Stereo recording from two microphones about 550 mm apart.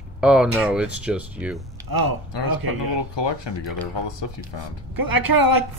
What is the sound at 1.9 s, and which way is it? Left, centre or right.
Speech, right.